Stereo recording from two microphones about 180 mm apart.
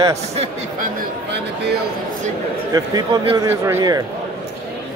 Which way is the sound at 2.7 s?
25° right (ahead or behind).